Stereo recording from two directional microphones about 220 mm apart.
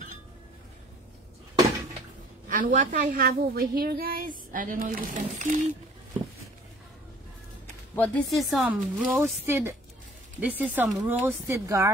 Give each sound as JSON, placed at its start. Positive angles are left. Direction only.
{"t": 2.4, "sound": "a woman's voice", "side_deg": -35}
{"t": 7.9, "sound": "a woman's voice", "side_deg": 5}